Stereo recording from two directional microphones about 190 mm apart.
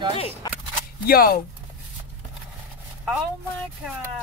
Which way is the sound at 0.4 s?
20° left (ahead or behind).